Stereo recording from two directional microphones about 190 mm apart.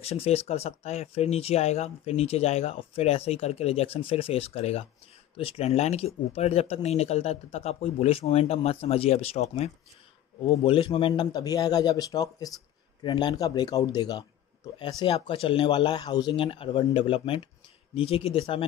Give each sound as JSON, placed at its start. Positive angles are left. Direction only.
{"t": 0.0, "sound": "speech", "side_deg": 35}